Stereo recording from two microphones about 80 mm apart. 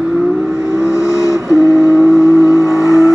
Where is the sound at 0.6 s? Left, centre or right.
Left.